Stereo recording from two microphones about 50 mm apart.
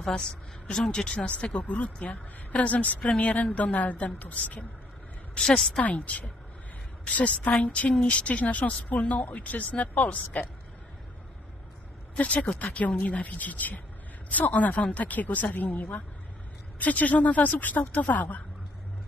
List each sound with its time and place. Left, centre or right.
0.1 s speech: centre; by 4.6 s left
5.6 s a woman's voice: centre
5.9 s speech: left
12.2 s speech: left